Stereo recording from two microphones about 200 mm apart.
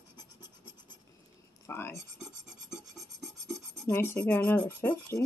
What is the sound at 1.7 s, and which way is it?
Speech, 10° left (ahead or behind).